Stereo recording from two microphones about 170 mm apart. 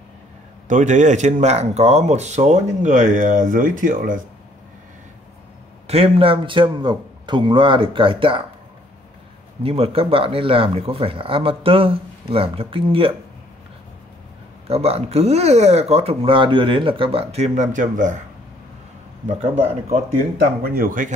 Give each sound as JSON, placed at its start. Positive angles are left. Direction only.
{"t": 0.7, "sound": "speech", "side_deg": -45}
{"t": 5.9, "sound": "speech", "side_deg": -35}
{"t": 9.6, "sound": "speech", "side_deg": -35}
{"t": 14.7, "sound": "speech", "side_deg": -35}
{"t": 20.6, "sound": "speech", "side_deg": -55}